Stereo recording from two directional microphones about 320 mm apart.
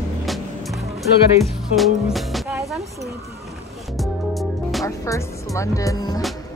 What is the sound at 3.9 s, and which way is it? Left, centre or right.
Music, centre.